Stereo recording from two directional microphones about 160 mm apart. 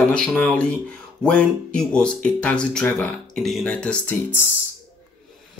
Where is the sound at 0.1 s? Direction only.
5° left (ahead or behind).